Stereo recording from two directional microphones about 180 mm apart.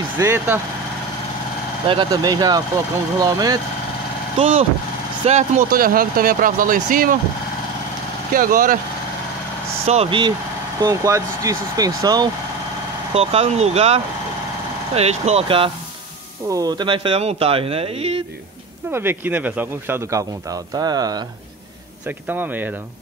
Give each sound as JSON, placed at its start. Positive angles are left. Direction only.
{"t": 0.2, "sound": "speech", "side_deg": -15}
{"t": 1.9, "sound": "speech", "side_deg": -25}
{"t": 4.4, "sound": "speech", "side_deg": -35}
{"t": 8.3, "sound": "speech", "side_deg": -50}
{"t": 9.8, "sound": "speech", "side_deg": -30}
{"t": 10.8, "sound": "speech", "side_deg": -20}
{"t": 13.1, "sound": "speech", "side_deg": -35}
{"t": 18.9, "sound": "speech", "side_deg": -10}
{"t": 22.0, "sound": "speech", "side_deg": -10}